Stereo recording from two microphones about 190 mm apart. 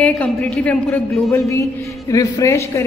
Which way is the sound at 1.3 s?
15° left (ahead or behind).